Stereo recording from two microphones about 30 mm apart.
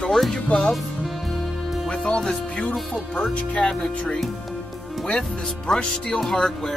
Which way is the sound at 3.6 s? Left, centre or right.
Left.